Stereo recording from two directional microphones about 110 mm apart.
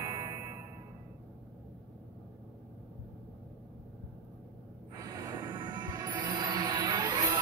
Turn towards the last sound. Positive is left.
turn(degrees=-35)  # may be behind; listen again after turning